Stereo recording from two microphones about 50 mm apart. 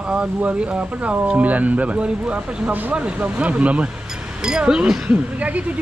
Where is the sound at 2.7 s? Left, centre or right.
Right; by 4.9 s centre.